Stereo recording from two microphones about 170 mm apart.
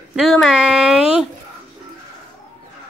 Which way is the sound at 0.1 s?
Centre (ahead or behind).